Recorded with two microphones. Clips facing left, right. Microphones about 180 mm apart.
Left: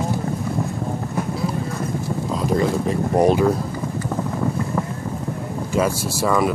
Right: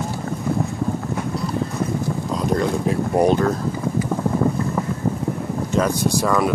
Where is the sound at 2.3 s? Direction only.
Centre (ahead or behind).